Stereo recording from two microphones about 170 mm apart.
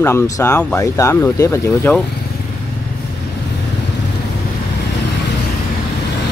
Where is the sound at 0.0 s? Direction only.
15° left (ahead or behind).